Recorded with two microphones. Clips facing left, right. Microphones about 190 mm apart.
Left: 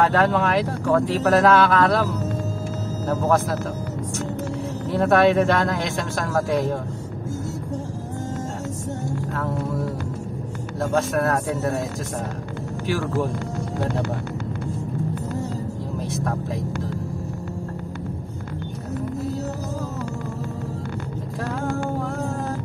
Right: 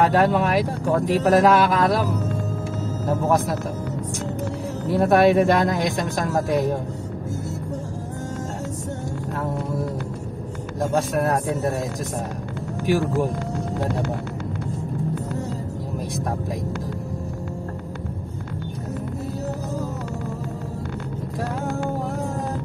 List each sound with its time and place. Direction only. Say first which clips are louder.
0.0 s speech: right 1 dB; 15° right (ahead or behind)
3.1 s speech: even; 15° right (ahead or behind)
4.9 s speech: right 1 dB; 10° right (ahead or behind)
10.8 s speech: even; 15° right (ahead or behind)
12.8 s speech: right 3 dB; 15° right (ahead or behind)